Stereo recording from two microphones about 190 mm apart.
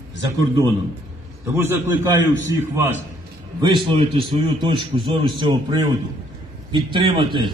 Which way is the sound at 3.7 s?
30° right (ahead or behind).